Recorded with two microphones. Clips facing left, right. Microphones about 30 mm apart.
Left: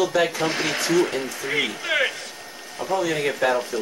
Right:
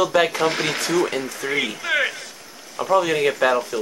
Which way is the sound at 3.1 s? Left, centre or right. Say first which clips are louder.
Right 3 dB; centre.